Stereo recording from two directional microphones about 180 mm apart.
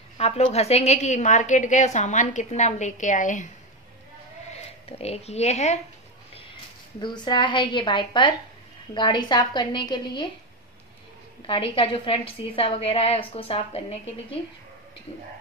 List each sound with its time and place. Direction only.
0.2 s a woman's voice: 35° left (ahead or behind)
4.5 s speech: 35° left (ahead or behind)
6.3 s a woman's voice: 25° left (ahead or behind)
11.4 s a woman's voice: 30° left (ahead or behind)